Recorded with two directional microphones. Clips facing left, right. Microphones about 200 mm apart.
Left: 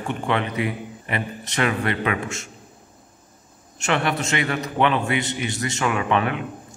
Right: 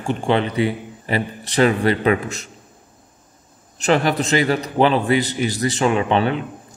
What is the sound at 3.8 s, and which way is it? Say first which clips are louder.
A man's voice: right 5 dB; 35° right (ahead or behind).